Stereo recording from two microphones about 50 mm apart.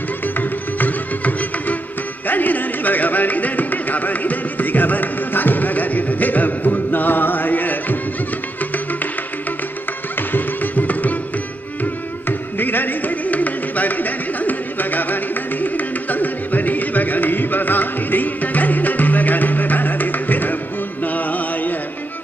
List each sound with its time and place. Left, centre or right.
0.2 s music: left
2.2 s a sound: left
8.5 s music: left
10.1 s music: left